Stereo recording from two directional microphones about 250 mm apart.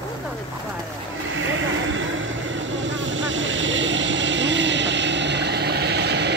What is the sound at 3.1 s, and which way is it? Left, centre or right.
Vehicle, right.